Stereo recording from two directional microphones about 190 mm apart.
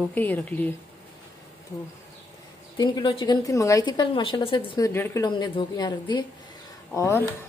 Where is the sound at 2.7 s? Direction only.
20° left (ahead or behind).